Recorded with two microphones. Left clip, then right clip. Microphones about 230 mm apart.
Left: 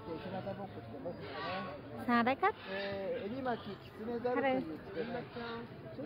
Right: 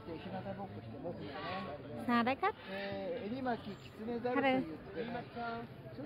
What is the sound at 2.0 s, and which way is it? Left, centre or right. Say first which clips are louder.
Speech: left 2 dB; centre.